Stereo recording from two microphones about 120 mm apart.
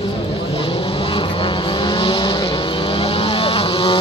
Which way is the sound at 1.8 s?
45° left (ahead or behind).